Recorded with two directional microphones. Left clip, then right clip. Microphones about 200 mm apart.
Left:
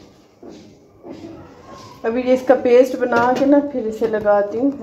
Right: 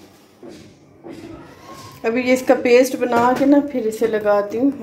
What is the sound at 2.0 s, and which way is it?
A woman's voice, 25° right (ahead or behind).